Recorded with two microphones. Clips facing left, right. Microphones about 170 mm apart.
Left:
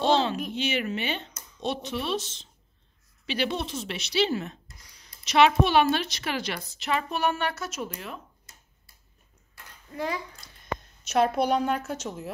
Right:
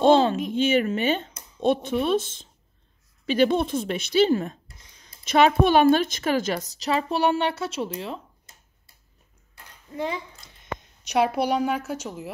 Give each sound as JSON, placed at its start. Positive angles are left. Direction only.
{"t": 0.0, "sound": "a child's voice", "side_deg": -50}
{"t": 4.6, "sound": "a sound", "side_deg": -25}
{"t": 5.2, "sound": "a woman's voice", "side_deg": -50}
{"t": 9.9, "sound": "a child's voice", "side_deg": -20}